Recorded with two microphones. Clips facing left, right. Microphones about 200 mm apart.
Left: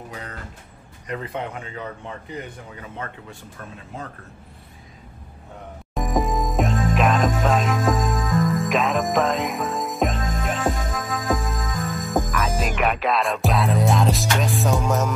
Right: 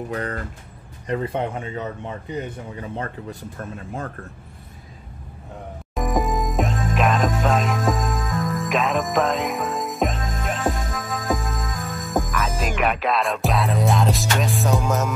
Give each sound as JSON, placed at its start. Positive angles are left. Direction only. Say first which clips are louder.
{"t": 0.1, "sound": "speech", "louder": "right 12 dB", "side_deg": -55}
{"t": 1.0, "sound": "speech", "louder": "right 5 dB", "side_deg": -30}
{"t": 3.7, "sound": "speech", "louder": "right 3 dB", "side_deg": -50}
{"t": 5.9, "sound": "music", "louder": "even", "side_deg": 0}